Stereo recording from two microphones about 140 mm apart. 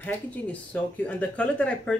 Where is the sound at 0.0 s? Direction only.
10° left (ahead or behind).